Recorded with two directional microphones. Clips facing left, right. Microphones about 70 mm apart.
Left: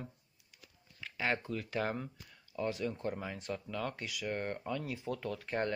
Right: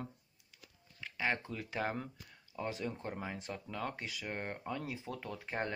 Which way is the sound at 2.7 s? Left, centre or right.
Right.